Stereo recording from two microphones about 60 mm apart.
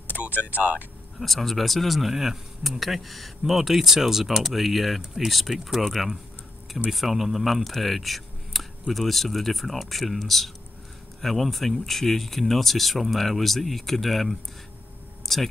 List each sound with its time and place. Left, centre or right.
0.3 s speech: left
1.2 s speech: centre
15.3 s a sound: centre